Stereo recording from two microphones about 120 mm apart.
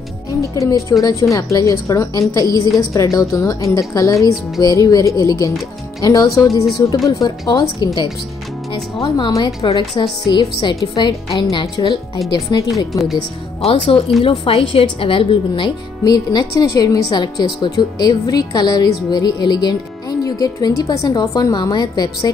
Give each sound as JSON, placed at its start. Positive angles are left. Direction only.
{"t": 0.3, "sound": "a woman's voice", "side_deg": 25}
{"t": 9.6, "sound": "speech", "side_deg": 50}
{"t": 13.0, "sound": "speech", "side_deg": 0}
{"t": 13.7, "sound": "speech", "side_deg": 50}